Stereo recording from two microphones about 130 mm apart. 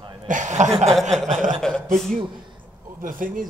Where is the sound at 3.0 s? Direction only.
90° right.